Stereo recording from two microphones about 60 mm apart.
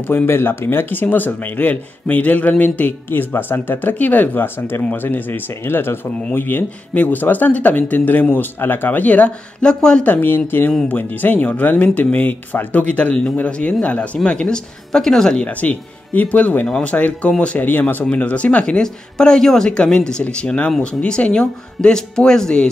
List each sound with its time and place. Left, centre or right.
0.0 s speech: left
3.1 s speech: left
9.7 s speech: centre
10.0 s speech: left; by 15.4 s centre
15.4 s speech: left
16.6 s speech: centre